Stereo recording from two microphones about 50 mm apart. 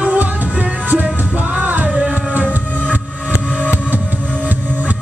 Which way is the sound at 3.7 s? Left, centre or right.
Right.